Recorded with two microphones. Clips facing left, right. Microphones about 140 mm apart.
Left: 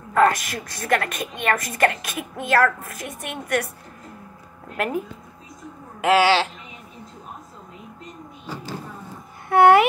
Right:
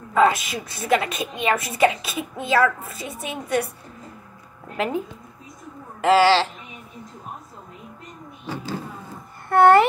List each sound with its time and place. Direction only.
0.1 s a woman's voice: 5° right (ahead or behind)
3.1 s a woman's voice: 65° left (ahead or behind)
4.7 s a woman's voice: 5° left (ahead or behind)
6.0 s speech: 10° left (ahead or behind)
9.5 s a woman's voice: centre (ahead or behind)